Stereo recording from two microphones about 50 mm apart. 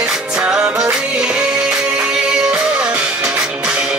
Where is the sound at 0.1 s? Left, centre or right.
Centre.